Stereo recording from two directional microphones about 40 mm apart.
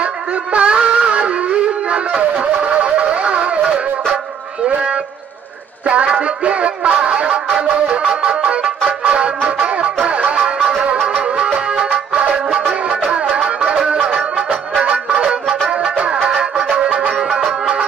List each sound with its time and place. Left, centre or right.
0.0 s music: right
4.6 s a sound: right
5.9 s music: right
8.0 s music: right
11.2 s music: right